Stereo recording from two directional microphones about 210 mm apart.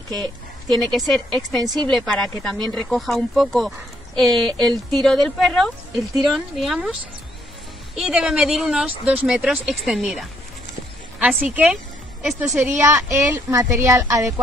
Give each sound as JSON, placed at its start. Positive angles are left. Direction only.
{"t": 0.1, "sound": "a woman's voice", "side_deg": -20}
{"t": 0.7, "sound": "speech", "side_deg": 0}
{"t": 1.6, "sound": "a woman's voice", "side_deg": -20}
{"t": 1.9, "sound": "speech", "side_deg": 5}
{"t": 4.5, "sound": "speech", "side_deg": -20}
{"t": 4.9, "sound": "speech", "side_deg": 0}
{"t": 7.9, "sound": "a woman's voice", "side_deg": -5}